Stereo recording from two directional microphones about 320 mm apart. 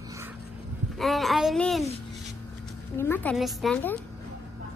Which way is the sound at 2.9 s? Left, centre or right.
Centre.